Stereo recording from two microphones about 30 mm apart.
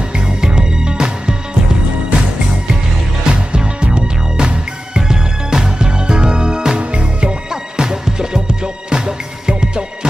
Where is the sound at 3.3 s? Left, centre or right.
Right.